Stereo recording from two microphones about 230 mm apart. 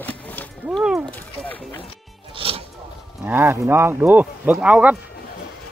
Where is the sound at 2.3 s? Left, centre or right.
Right.